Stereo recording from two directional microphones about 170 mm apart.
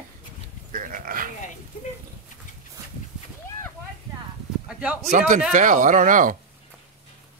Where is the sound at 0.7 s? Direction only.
50° right (ahead or behind).